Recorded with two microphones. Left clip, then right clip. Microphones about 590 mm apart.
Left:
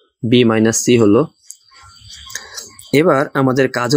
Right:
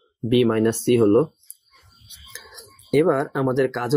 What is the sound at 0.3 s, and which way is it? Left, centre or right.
Speech, right.